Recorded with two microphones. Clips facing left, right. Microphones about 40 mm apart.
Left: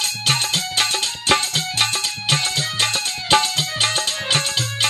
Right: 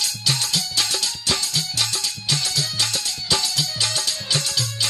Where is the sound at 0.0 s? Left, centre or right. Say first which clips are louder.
Left 3 dB; left.